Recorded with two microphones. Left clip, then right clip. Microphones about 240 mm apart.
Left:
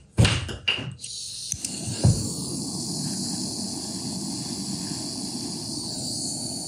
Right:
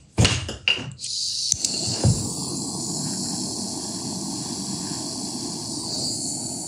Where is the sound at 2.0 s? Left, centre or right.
Centre.